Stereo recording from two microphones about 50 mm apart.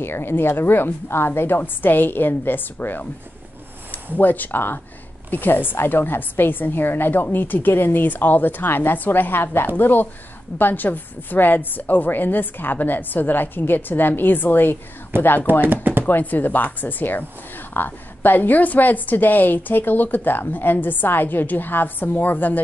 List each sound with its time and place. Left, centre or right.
0.0 s a woman's voice: left
15.1 s speech: right
15.6 s chopping: right
16.1 s speech: left